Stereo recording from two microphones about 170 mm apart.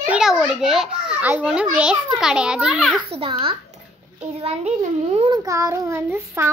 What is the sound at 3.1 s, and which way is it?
A child's voice, 35° right (ahead or behind).